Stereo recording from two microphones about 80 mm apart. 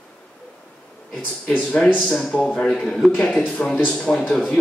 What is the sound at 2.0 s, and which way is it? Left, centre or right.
Speech, centre.